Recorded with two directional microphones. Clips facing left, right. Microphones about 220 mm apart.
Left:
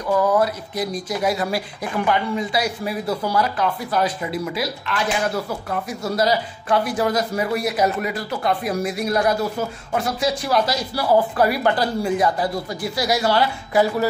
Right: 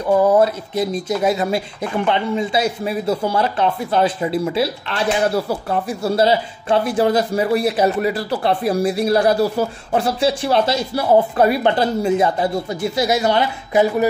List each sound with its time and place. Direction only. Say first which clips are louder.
0.0 s speech: right 5 dB; 30° right (ahead or behind)